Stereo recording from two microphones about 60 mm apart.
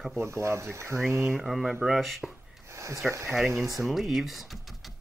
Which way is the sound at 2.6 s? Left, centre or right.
Right.